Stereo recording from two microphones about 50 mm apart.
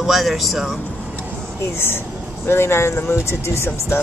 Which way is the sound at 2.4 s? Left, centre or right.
Left.